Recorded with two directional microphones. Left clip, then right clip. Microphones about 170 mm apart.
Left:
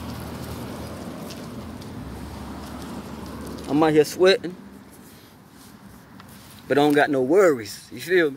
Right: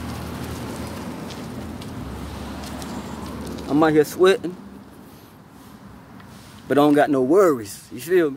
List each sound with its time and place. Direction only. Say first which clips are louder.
2.6 s a sound: right 3 dB; 30° left (ahead or behind)
3.6 s speech: right 1 dB; 15° left (ahead or behind)
6.7 s speech: right 2 dB; 5° right (ahead or behind)